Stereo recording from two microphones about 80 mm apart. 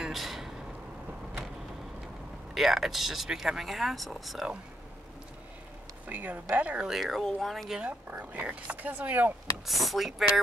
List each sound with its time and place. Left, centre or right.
0.0 s a sound: centre
2.5 s speech: centre
6.0 s speech: right
6.9 s speech: centre
7.8 s speech: centre
9.7 s speech: centre